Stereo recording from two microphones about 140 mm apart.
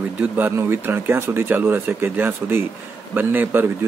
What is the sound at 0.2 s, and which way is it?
A man's voice, 15° right (ahead or behind).